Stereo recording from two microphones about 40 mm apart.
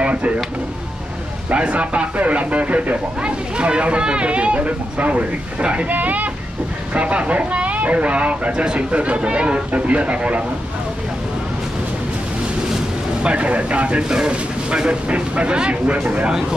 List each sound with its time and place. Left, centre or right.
0.0 s vehicle: right
1.5 s speech: right
3.2 s speech: right
5.9 s speech: right
6.9 s speech: right
13.2 s speech: right
14.0 s speech: centre
14.9 s speech: right